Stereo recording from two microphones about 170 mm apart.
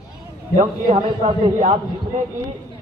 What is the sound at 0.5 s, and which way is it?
Speech, 35° right (ahead or behind).